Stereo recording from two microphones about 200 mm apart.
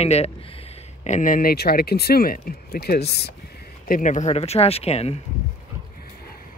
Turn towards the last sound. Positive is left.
turn(degrees=30)  # may be behind; listen again after turning